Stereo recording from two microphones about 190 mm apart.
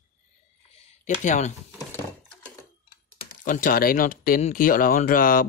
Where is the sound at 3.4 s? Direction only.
45° left (ahead or behind).